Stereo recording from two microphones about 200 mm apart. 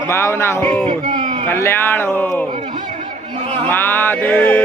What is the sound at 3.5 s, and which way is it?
Speech, 10° left (ahead or behind).